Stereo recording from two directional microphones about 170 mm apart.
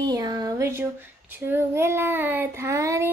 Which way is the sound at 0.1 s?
20° right (ahead or behind).